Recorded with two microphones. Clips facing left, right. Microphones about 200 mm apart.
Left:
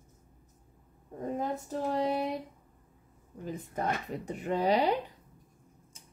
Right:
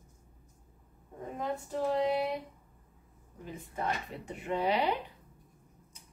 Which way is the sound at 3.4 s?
40° left (ahead or behind).